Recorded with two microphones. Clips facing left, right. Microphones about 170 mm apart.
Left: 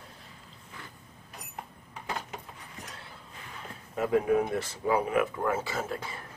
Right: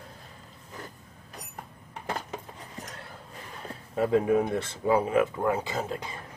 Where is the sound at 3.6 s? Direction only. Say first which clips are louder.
Right 4 dB; 35° right (ahead or behind).